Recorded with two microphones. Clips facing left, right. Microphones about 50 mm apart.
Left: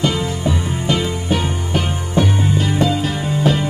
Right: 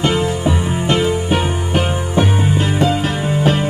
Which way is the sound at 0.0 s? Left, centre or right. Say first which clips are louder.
Right 3 dB; right.